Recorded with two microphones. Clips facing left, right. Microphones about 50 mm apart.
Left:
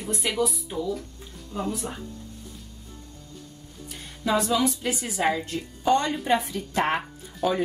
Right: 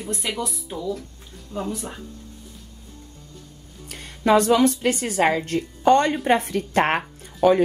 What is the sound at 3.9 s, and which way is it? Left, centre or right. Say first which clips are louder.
A woman's voice: right 7 dB; right.